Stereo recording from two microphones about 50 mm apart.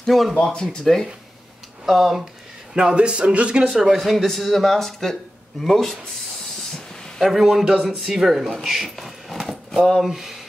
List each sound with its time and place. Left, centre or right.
0.0 s speech: centre
0.3 s speech: centre
1.9 s speech: centre
2.7 s speech: centre
3.6 s speech: centre
7.2 s speech: centre